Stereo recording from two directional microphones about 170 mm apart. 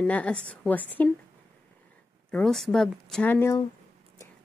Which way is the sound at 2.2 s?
5° left (ahead or behind).